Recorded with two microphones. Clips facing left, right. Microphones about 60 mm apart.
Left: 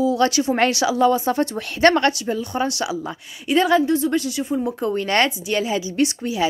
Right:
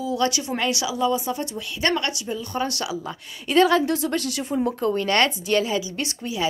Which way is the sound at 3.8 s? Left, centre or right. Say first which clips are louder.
Left 4 dB; centre.